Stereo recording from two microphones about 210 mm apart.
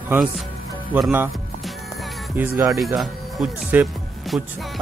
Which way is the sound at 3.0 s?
Centre (ahead or behind).